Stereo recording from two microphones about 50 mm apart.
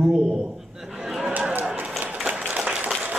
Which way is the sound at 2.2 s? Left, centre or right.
Right.